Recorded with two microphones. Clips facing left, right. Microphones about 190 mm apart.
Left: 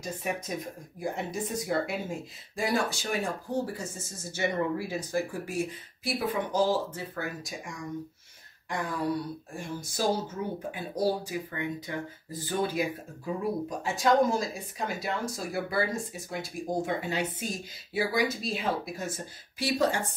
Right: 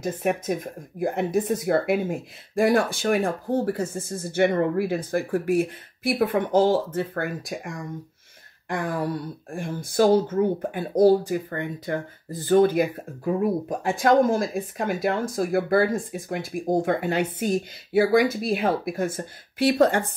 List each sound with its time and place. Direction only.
0.0 s speech: 55° right (ahead or behind)